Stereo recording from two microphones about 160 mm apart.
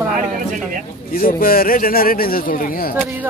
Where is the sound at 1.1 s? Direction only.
65° left (ahead or behind).